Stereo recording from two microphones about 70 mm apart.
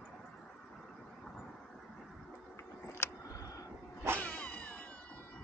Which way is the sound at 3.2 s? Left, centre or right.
Left.